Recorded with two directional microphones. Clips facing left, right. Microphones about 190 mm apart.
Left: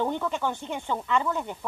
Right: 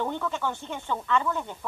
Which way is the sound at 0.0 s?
15° left (ahead or behind).